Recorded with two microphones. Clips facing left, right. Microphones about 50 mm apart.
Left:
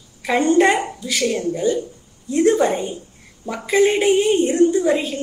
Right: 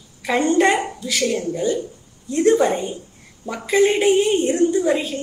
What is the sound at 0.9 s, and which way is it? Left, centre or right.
A woman's voice, centre.